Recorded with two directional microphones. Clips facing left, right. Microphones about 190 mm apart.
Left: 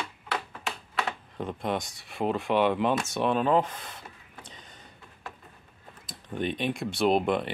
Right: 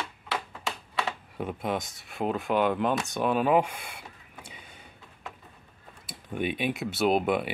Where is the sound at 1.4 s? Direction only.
5° right (ahead or behind).